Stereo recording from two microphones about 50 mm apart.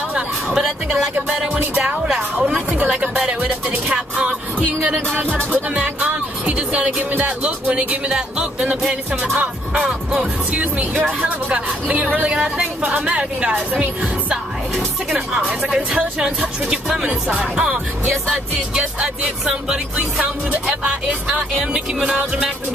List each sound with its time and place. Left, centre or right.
2.0 s speech: centre
2.4 s music: right
6.5 s music: right
8.1 s speech: centre
10.5 s speech: right
12.3 s speech: centre
13.0 s music: right
15.9 s speech: centre
17.3 s music: right
19.4 s speech: centre